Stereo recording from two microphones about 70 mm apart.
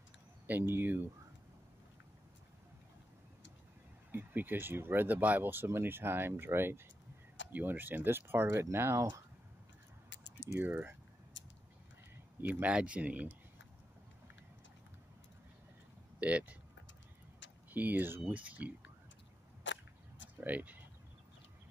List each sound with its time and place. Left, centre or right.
0.5 s speech: right
4.1 s speech: right
10.6 s speech: right
12.4 s speech: right
16.2 s speech: centre
17.7 s speech: right
20.3 s speech: right